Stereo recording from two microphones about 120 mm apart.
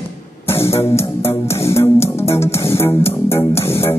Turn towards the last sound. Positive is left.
turn(degrees=20)  # may be behind; listen again after turning